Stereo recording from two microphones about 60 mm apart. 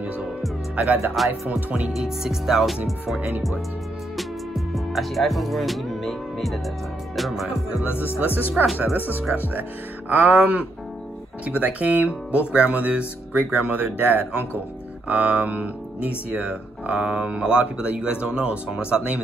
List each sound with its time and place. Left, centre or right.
0.7 s speech: right
1.1 s music: centre
1.5 s speech: centre
1.9 s music: centre
4.2 s music: centre
7.9 s speech: left
8.9 s speech: right